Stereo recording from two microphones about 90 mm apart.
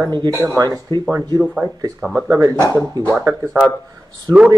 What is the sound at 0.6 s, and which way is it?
Speech, 50° right (ahead or behind).